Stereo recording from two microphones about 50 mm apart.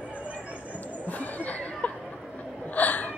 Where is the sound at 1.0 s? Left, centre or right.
Left.